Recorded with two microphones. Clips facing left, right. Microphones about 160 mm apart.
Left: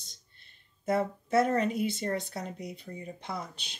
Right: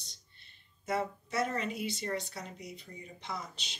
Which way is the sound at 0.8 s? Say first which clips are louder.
Left 5 dB; 55° left (ahead or behind).